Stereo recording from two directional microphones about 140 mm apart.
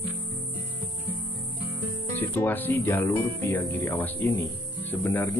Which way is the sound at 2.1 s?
15° left (ahead or behind).